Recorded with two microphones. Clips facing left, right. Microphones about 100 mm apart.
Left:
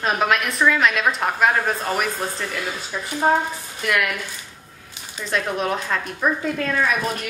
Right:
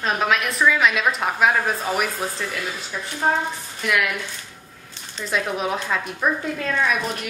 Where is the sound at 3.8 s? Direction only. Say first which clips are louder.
Even; centre (ahead or behind).